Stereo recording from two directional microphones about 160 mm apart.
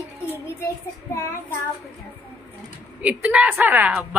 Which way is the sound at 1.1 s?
15° left (ahead or behind).